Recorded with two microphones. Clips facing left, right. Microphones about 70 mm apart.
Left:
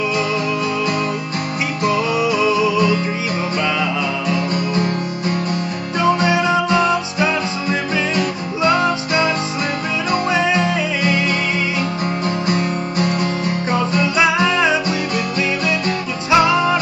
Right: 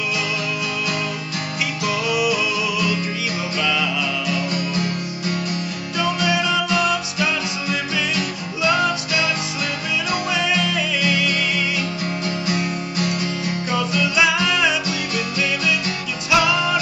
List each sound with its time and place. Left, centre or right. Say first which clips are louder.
1.9 s music: left 3 dB; left
5.9 s music: left 5 dB; left
16.3 s music: left 4 dB; left